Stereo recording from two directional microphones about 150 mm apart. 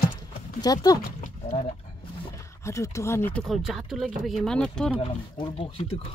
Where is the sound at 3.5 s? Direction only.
Centre (ahead or behind).